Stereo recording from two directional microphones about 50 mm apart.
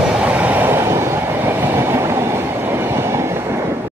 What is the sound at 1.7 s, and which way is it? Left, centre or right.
Train, right.